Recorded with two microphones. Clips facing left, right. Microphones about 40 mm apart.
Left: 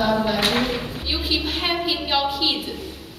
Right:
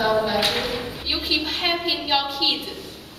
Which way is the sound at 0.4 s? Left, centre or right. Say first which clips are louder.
Left 2 dB; left.